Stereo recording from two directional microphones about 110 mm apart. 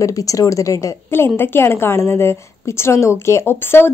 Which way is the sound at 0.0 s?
30° left (ahead or behind).